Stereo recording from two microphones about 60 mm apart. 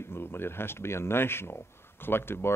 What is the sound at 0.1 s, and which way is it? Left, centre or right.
Speech, left.